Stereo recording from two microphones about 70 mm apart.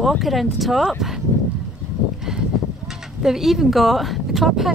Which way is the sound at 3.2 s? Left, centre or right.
Centre.